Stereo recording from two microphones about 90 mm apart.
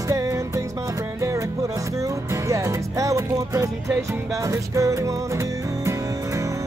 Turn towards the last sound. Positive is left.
turn(degrees=-35)  # may be behind; listen again after turning